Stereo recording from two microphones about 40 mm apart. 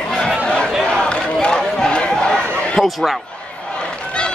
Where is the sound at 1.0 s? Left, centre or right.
Left.